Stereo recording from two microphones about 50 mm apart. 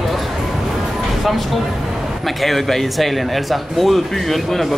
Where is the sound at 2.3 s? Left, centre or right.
Centre.